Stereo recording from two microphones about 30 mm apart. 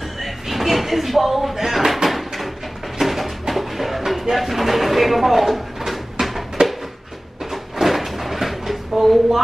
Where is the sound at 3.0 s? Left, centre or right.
Centre.